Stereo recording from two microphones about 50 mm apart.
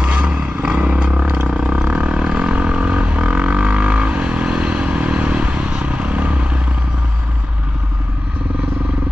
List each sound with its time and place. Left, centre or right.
0.0 s vehicle: right
1.9 s didgeridoo: right
5.9 s motorcycle: right